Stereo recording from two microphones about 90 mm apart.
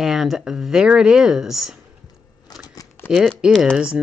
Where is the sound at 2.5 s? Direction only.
50° left (ahead or behind).